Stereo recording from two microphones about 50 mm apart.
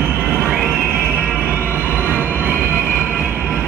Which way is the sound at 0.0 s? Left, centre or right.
Centre.